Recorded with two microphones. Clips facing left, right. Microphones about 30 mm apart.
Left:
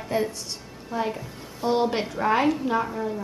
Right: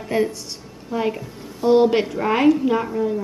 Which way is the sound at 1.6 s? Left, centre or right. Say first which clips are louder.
Right 8 dB; centre.